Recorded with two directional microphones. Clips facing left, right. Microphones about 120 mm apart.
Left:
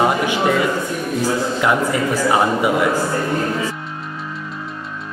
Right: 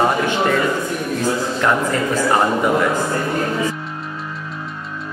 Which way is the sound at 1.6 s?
10° left (ahead or behind).